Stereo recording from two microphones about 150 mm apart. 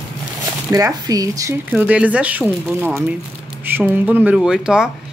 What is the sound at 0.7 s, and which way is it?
Speech, 25° right (ahead or behind).